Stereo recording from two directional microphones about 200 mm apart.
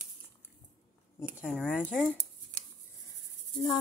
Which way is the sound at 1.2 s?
10° right (ahead or behind).